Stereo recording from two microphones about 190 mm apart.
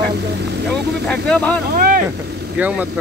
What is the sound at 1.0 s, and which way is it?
Speech, 5° left (ahead or behind).